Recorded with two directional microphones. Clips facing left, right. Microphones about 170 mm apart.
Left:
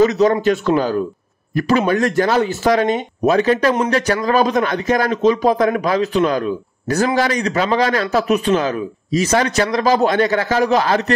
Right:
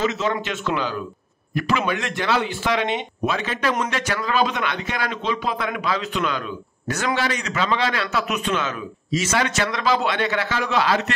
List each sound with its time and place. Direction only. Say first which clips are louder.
0.0 s speech: left 10 dB; 40° left (ahead or behind)